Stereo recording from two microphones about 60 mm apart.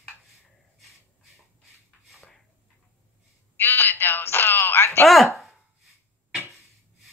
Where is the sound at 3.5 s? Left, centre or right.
Left.